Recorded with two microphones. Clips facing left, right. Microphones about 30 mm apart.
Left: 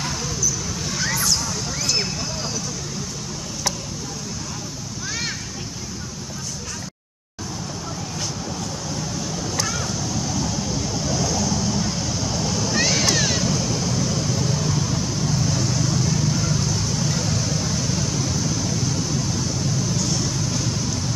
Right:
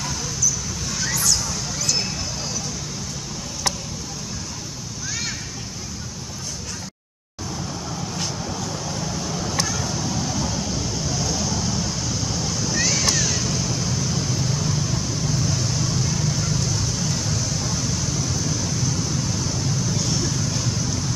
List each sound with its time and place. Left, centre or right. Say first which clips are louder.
0.8 s vehicle: left 1 dB; centre
1.8 s a sound: left 1 dB; centre
9.9 s vehicle: even; centre
12.7 s vehicle: left 2 dB; left
13.4 s vehicle: left 2 dB; centre